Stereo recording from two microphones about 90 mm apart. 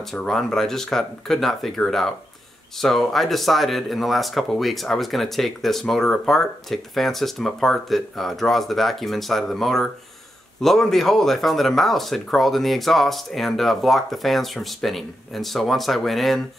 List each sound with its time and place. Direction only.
0.1 s speech: 5° left (ahead or behind)